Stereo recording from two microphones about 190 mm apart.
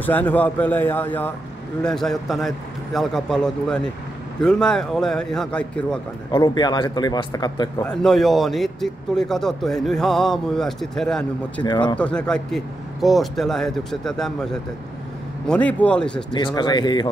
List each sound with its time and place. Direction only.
0.0 s a man's voice: 10° left (ahead or behind)
6.3 s speech: 20° left (ahead or behind)
7.8 s speech: 5° left (ahead or behind)
11.6 s speech: 25° left (ahead or behind)
12.0 s speech: 5° left (ahead or behind)
16.3 s speech: 25° left (ahead or behind)